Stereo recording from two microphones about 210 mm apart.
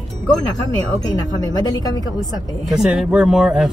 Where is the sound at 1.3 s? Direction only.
20° left (ahead or behind).